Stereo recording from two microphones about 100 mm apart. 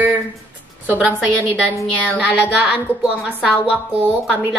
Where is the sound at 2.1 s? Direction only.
15° right (ahead or behind).